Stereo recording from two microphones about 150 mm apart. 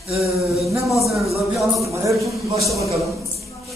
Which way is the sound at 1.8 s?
20° right (ahead or behind).